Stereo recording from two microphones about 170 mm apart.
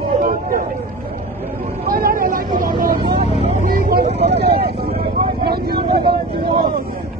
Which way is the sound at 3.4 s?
40° right (ahead or behind).